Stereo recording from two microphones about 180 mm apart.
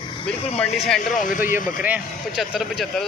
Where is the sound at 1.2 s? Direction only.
50° left (ahead or behind).